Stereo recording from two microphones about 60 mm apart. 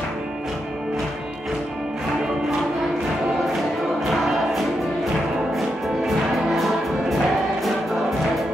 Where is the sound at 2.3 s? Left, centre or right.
Centre.